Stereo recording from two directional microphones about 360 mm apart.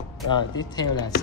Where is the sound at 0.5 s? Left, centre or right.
Centre.